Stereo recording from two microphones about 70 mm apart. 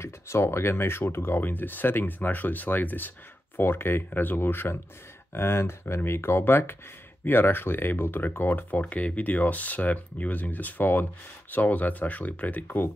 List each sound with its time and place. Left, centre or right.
0.0 s speech: left